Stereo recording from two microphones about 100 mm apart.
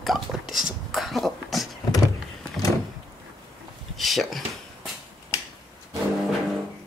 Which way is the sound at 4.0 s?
Centre (ahead or behind).